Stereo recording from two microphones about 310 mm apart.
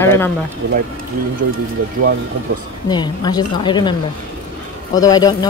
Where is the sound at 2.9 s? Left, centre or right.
Centre.